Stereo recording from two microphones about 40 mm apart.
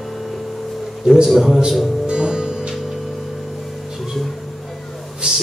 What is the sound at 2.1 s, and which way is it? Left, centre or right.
Music, right.